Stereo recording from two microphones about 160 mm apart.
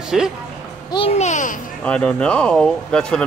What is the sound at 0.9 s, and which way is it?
Speech, 40° left (ahead or behind).